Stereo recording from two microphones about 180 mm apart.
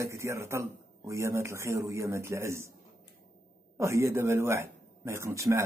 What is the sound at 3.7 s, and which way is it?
A man's voice, 15° right (ahead or behind).